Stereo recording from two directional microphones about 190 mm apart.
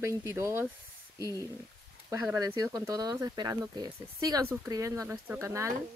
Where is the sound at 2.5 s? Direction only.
20° right (ahead or behind).